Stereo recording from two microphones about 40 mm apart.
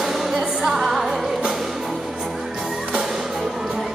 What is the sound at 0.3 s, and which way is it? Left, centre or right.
Music, centre.